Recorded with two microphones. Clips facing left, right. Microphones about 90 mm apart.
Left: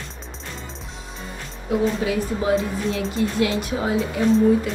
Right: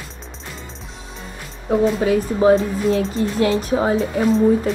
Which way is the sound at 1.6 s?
40° right (ahead or behind).